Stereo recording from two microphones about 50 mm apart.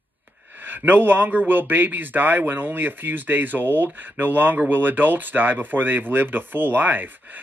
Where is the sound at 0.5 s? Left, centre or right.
Right.